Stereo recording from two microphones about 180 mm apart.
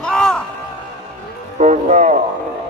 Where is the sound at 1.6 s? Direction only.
40° right (ahead or behind).